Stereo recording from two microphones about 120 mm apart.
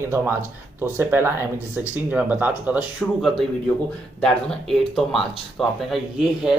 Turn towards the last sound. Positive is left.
turn(degrees=-5)  # may be behind; listen again after turning